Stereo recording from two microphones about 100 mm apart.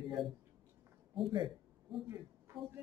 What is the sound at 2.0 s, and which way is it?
Speech, 25° right (ahead or behind).